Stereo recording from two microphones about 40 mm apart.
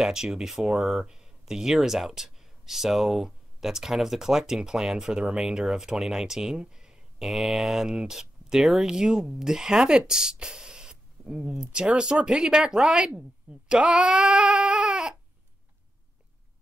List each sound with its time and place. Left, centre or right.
0.0 s speech: centre
7.2 s speech: centre
8.8 s speech: centre